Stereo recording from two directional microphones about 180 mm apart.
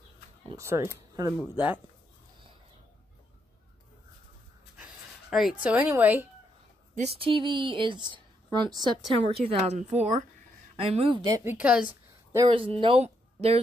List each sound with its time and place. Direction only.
0.6 s speech: 15° right (ahead or behind)
0.9 s a sound: 20° right (ahead or behind)
1.4 s speech: 10° right (ahead or behind)
4.7 s speech: 5° right (ahead or behind)
7.0 s a woman's voice: 35° right (ahead or behind)
11.2 s speech: 20° right (ahead or behind)
11.5 s a woman's voice: 5° right (ahead or behind)
12.4 s a woman's voice: 30° right (ahead or behind)